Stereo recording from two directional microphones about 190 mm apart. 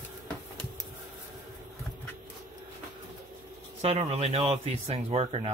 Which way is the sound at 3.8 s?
30° right (ahead or behind).